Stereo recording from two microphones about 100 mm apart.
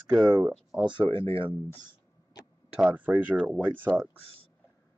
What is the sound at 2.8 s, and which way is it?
Speech, 15° right (ahead or behind).